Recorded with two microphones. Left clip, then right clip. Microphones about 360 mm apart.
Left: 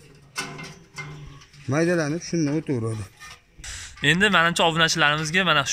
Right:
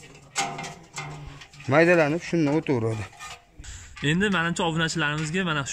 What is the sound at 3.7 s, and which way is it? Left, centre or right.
Speech, centre.